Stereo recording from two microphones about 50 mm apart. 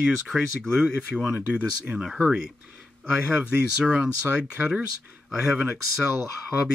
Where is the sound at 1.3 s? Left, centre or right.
Right.